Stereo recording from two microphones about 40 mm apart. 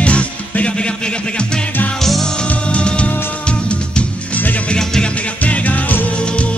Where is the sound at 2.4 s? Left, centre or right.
Left.